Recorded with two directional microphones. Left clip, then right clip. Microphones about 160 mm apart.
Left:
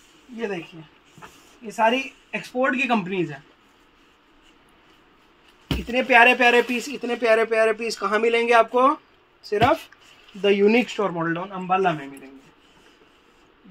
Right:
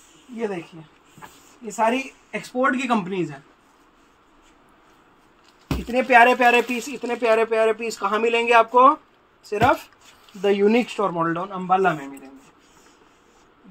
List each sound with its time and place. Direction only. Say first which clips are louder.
1.9 s speech: left 1 dB; 15° left (ahead or behind)
5.7 s speech: right 1 dB; 5° left (ahead or behind); by 8.9 s 25° left (ahead or behind)
9.5 s speech: even; 10° left (ahead or behind)